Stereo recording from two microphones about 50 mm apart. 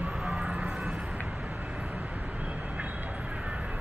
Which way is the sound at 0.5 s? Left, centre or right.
Right.